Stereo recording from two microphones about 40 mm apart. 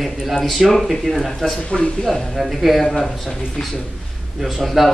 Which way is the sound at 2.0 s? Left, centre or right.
Centre.